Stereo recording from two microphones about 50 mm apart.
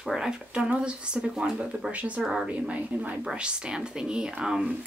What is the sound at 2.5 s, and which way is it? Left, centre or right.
Speech, right.